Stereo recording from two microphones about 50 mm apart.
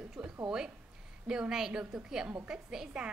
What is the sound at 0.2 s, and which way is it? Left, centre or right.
A woman's voice, centre.